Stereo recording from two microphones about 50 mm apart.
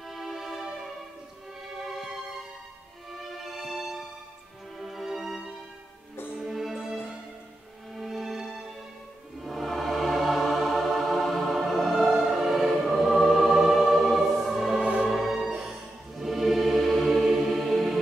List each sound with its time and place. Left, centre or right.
0.1 s music: centre
3.1 s music: centre
14.8 s music: right
15.0 s music: centre